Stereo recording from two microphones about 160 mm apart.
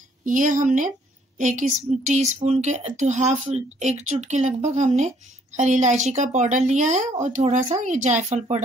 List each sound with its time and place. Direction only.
0.2 s a woman's voice: 55° right (ahead or behind)